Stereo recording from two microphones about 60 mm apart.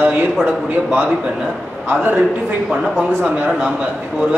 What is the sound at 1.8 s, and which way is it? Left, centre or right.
A man's voice, right.